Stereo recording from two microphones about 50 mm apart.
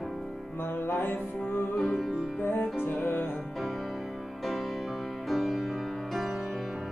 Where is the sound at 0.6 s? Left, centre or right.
Left.